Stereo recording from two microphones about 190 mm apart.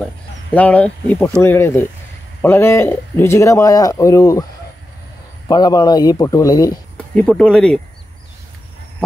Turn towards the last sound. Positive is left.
turn(degrees=5)  # may be behind; listen again after turning